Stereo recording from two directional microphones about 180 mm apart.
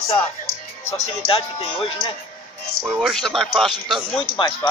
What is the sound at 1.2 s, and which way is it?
Speech, 30° left (ahead or behind).